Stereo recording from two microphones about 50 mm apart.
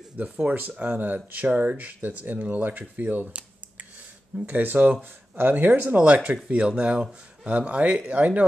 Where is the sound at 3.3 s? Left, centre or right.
Right.